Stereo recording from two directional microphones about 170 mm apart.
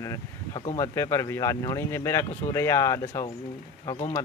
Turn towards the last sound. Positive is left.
turn(degrees=35)  # may be behind; listen again after turning